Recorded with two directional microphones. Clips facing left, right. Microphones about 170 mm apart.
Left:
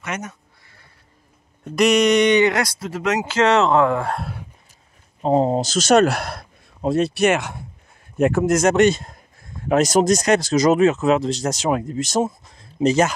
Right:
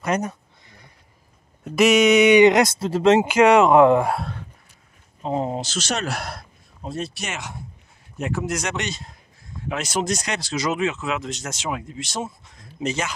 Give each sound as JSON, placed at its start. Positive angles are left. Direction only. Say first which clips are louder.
{"t": 0.0, "sound": "speech", "louder": "right 6 dB", "side_deg": -35}
{"t": 1.6, "sound": "speech", "louder": "even", "side_deg": 0}
{"t": 2.4, "sound": "speech", "louder": "right 4 dB", "side_deg": -20}
{"t": 3.3, "sound": "speech", "louder": "right 2 dB", "side_deg": -10}
{"t": 5.2, "sound": "speech", "louder": "left 7 dB", "side_deg": 35}
{"t": 6.0, "sound": "speech", "louder": "left 7 dB", "side_deg": 65}
{"t": 12.5, "sound": "a sound", "louder": "left 10 dB", "side_deg": 35}